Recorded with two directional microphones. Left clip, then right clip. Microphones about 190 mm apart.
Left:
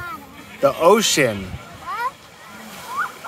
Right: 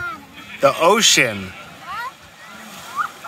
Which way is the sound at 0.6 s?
Centre (ahead or behind).